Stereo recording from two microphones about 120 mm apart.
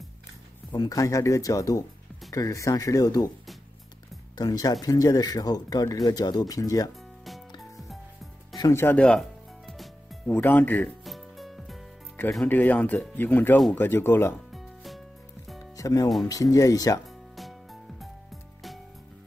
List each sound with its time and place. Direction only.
0.7 s speech: 30° left (ahead or behind)
4.4 s speech: 30° left (ahead or behind)
6.9 s music: centre (ahead or behind)
8.5 s speech: 30° left (ahead or behind)
8.8 s speech: 10° left (ahead or behind)
9.7 s music: 5° left (ahead or behind)
10.3 s speech: 15° left (ahead or behind)
11.1 s music: centre (ahead or behind)
12.4 s speech: 15° left (ahead or behind)
14.5 s music: centre (ahead or behind)
15.7 s speech: 30° left (ahead or behind)